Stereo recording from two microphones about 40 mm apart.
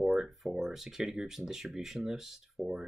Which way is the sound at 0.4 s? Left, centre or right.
Centre.